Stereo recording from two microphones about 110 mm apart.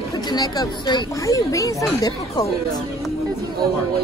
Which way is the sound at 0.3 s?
40° left (ahead or behind).